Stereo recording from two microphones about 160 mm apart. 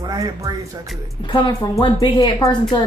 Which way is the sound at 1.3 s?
30° left (ahead or behind).